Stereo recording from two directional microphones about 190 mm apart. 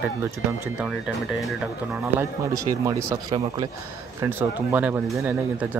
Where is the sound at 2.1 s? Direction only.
15° right (ahead or behind).